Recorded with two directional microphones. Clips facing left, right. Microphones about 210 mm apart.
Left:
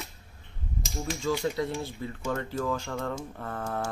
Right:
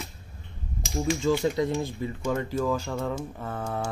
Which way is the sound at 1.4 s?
20° right (ahead or behind).